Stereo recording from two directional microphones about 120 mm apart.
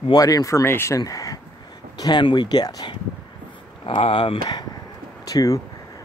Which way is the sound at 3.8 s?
45° left (ahead or behind).